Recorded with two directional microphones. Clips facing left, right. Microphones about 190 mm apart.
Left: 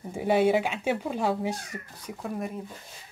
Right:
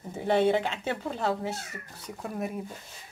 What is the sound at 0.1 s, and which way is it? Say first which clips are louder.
Speech: left 1 dB; 10° left (ahead or behind).